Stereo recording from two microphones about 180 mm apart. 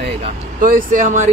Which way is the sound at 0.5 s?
50° right (ahead or behind).